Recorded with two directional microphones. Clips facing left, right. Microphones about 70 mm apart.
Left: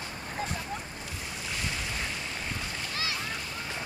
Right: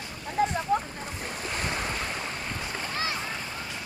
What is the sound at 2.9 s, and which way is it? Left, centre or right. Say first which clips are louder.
Splash: right 4 dB; right.